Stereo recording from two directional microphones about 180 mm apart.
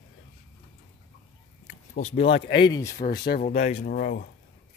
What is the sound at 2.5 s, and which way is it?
Speech, 25° left (ahead or behind).